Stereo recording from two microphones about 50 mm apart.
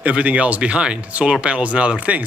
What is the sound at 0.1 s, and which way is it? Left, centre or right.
Speech, right.